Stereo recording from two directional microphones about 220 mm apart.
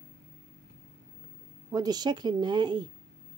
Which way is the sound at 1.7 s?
15° right (ahead or behind).